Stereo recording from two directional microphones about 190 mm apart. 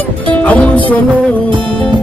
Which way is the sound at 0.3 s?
5° left (ahead or behind).